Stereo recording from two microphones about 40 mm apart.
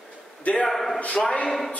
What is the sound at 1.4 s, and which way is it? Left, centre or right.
Speech, centre.